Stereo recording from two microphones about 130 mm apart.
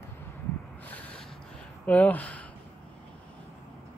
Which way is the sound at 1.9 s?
10° left (ahead or behind).